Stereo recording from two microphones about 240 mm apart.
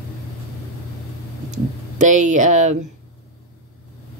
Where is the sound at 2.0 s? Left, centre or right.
Right.